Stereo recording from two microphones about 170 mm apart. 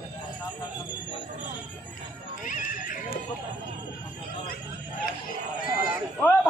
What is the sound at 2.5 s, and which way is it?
Neigh, 55° left (ahead or behind).